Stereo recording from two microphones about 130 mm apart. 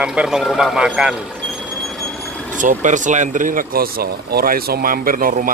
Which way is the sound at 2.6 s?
75° right (ahead or behind).